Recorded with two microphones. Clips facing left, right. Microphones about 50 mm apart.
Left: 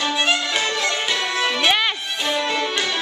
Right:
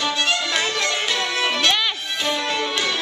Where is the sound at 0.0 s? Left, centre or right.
Centre.